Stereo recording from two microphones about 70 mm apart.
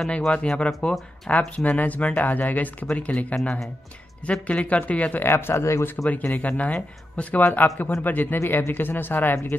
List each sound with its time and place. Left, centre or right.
0.1 s speech: centre
3.3 s speech: centre
4.3 s speech: centre
5.2 s speech: left
6.2 s speech: left